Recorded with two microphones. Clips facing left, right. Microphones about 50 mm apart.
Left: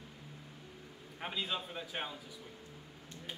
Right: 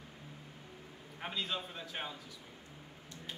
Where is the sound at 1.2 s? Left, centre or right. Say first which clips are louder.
Even; centre.